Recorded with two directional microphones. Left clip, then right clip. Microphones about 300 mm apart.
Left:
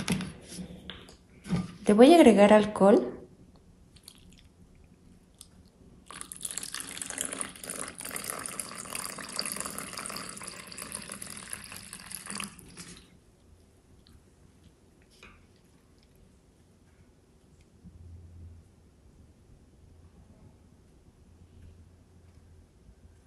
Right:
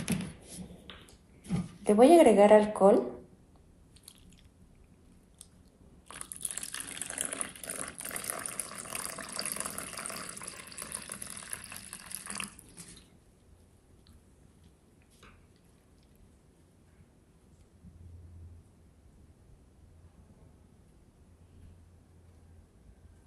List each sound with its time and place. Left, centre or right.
0.0 s computer keyboard: centre
1.4 s a sound: centre
2.0 s speech: left
3.9 s biting: centre
6.0 s water: centre